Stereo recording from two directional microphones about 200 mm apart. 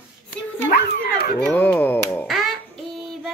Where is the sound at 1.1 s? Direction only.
50° left (ahead or behind).